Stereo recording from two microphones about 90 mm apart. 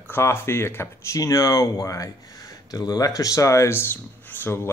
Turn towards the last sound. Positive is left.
turn(degrees=25)  # may be behind; listen again after turning